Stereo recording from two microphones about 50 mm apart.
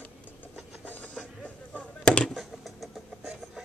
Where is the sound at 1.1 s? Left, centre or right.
Left.